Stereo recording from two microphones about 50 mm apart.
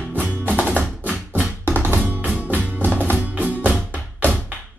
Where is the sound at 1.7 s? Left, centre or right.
Right.